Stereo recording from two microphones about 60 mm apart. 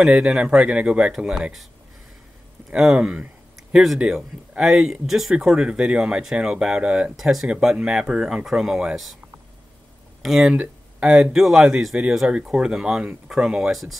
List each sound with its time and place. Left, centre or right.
0.2 s speech: centre
2.7 s speech: centre
7.2 s speech: centre
10.2 s speech: centre
10.5 s a sound: right
11.3 s speech: centre